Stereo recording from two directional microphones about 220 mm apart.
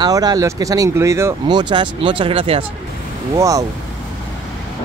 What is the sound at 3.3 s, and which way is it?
Speech, 15° right (ahead or behind).